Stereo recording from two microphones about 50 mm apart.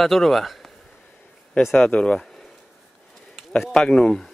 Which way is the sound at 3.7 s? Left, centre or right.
Centre.